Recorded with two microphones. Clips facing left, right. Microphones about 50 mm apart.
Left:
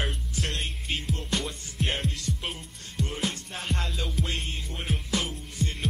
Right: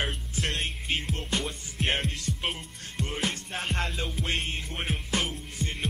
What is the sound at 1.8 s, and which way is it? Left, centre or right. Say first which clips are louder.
Music: right 1 dB; right.